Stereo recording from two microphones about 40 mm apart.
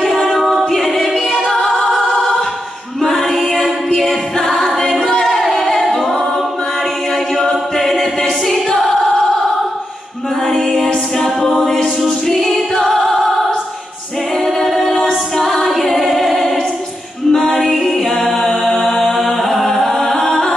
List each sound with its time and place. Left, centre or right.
0.1 s a capella: centre
0.7 s music: centre
3.5 s a capella: centre
7.3 s a capella: centre
10.5 s a capella: centre
11.5 s music: centre
14.7 s a capella: centre
17.3 s music: centre